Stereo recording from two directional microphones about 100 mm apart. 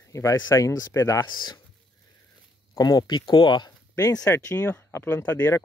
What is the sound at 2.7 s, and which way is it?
Speech, 40° left (ahead or behind).